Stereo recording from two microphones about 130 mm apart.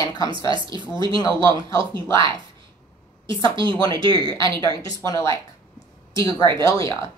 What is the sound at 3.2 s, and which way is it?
Speech, 40° right (ahead or behind).